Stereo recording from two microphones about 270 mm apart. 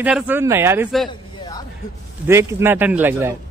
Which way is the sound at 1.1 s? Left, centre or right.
Centre.